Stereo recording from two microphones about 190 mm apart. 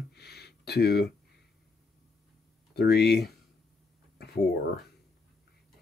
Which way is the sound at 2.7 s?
60° left (ahead or behind).